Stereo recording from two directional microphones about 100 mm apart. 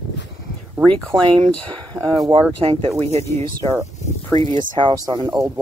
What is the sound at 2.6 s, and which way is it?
Speech, 65° right (ahead or behind).